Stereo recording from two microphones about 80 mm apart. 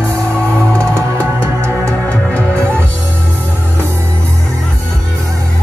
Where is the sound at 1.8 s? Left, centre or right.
Centre.